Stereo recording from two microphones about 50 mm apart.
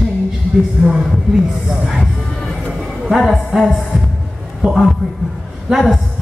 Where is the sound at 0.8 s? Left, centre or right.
Centre.